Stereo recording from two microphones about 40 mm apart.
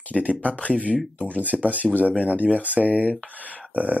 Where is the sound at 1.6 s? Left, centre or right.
Right.